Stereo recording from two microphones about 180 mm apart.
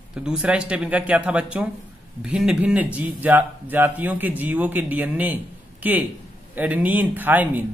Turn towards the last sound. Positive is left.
turn(degrees=-10)  # may be behind; listen again after turning